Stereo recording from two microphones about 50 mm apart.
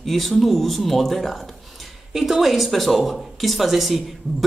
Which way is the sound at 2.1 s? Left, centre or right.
Centre.